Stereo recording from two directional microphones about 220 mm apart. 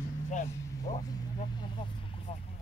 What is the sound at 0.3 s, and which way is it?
Speech, 35° left (ahead or behind).